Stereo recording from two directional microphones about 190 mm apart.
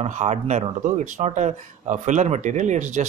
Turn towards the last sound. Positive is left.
turn(degrees=-40)  # may be behind; listen again after turning